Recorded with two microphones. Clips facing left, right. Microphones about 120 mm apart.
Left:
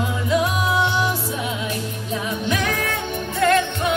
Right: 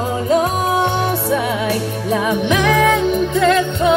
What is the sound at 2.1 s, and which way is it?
Music, 75° right (ahead or behind).